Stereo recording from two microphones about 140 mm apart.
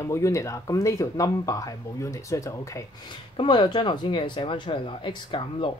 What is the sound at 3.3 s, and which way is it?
Speech, 35° left (ahead or behind).